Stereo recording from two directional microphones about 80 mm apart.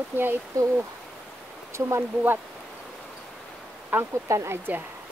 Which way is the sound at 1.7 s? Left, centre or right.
Right.